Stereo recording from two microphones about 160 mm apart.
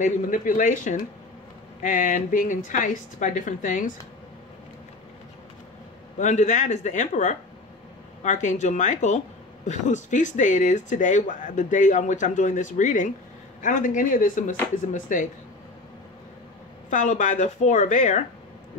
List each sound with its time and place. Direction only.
0.0 s speech: 55° left (ahead or behind)
6.1 s speech: 50° left (ahead or behind)
16.9 s speech: 50° left (ahead or behind)